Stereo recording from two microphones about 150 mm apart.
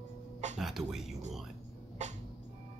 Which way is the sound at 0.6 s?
Centre (ahead or behind).